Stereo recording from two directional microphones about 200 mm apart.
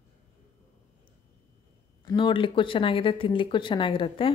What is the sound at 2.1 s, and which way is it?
Speech, 25° left (ahead or behind).